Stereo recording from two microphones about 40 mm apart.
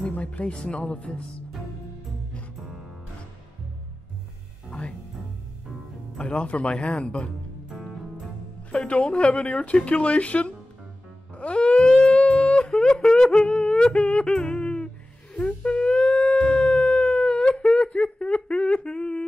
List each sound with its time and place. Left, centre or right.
0.1 s speech: left
6.2 s speech: left
9.0 s speech: left
11.3 s music: left
13.8 s yodeling: left
15.3 s howl: left
17.6 s humming: left